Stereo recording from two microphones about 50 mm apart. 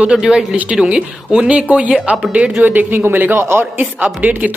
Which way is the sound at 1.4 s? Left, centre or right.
Right.